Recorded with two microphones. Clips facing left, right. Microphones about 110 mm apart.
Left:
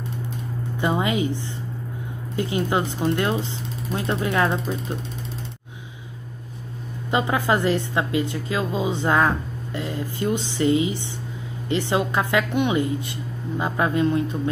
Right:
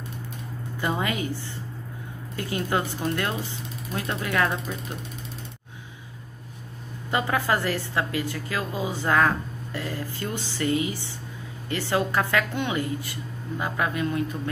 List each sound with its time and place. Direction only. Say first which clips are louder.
0.7 s a woman's voice: left 5 dB; 20° left (ahead or behind)
7.1 s a woman's voice: left 3 dB; 20° left (ahead or behind)